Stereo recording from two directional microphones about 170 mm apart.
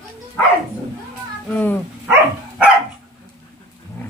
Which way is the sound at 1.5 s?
10° left (ahead or behind).